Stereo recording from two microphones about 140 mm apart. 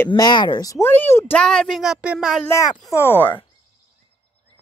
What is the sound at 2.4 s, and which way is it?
Speech, 20° left (ahead or behind).